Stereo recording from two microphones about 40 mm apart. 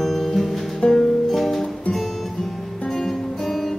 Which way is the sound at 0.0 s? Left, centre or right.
Centre.